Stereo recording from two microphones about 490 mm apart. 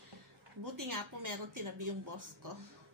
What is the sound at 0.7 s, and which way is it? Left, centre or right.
Speech, right.